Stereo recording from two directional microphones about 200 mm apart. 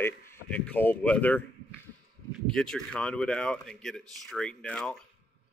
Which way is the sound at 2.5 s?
5° left (ahead or behind).